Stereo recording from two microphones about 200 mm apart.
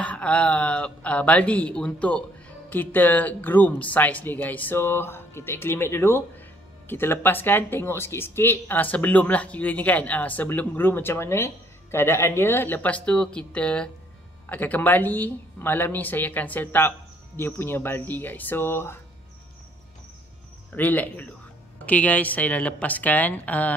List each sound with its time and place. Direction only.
0.0 s speech: 5° left (ahead or behind)
20.7 s speech: 10° left (ahead or behind)